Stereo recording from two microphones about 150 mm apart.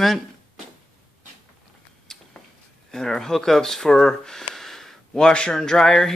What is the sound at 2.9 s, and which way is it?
Speech, 5° left (ahead or behind).